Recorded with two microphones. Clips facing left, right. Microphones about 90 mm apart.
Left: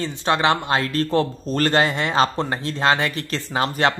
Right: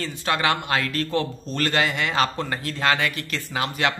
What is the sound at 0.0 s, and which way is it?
A man's voice, 25° left (ahead or behind).